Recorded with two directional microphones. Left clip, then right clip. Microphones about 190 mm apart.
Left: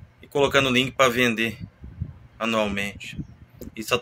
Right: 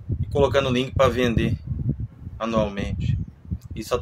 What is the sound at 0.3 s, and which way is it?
A man's voice, 10° right (ahead or behind).